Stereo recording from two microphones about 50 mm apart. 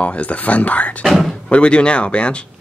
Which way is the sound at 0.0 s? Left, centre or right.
Left.